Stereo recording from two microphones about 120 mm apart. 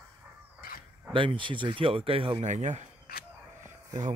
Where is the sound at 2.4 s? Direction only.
85° right.